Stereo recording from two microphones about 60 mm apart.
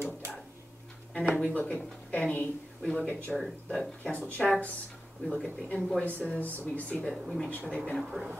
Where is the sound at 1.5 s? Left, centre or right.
Left; by 4.5 s centre.